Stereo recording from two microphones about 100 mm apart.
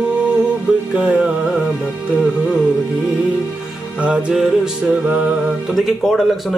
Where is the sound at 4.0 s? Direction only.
10° right (ahead or behind).